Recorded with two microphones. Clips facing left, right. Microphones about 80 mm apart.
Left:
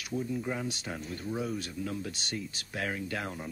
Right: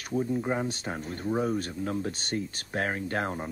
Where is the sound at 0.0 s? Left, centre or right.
Right.